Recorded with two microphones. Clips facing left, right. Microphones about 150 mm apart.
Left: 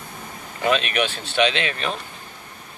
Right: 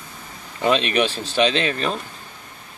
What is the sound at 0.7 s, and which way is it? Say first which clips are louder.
Speech: right 2 dB; 35° right (ahead or behind).